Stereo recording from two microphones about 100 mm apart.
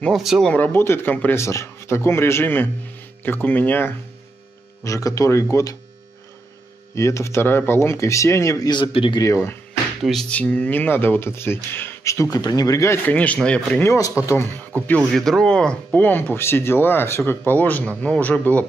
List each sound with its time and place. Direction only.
0.1 s speech: centre (ahead or behind)
0.5 s speech: 20° left (ahead or behind)
1.4 s speech: 30° left (ahead or behind)
4.8 s speech: 35° left (ahead or behind)
7.0 s speech: 30° left (ahead or behind)
8.6 s speech: 55° left (ahead or behind)
9.2 s speech: 30° left (ahead or behind)
10.3 s speech: 15° left (ahead or behind); by 13.0 s 30° left (ahead or behind)
13.0 s speech: 15° left (ahead or behind)
13.8 s speech: 30° left (ahead or behind)
14.9 s speech: 5° left (ahead or behind)